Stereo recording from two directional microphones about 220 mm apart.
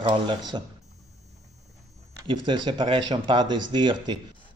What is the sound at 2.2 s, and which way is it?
A man's voice, 20° right (ahead or behind).